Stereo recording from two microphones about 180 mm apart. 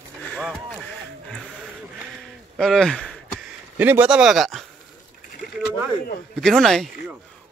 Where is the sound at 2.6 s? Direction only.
Centre (ahead or behind).